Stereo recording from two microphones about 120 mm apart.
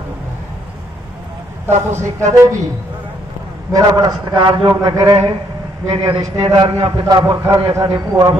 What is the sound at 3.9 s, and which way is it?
A man's voice, 40° right (ahead or behind).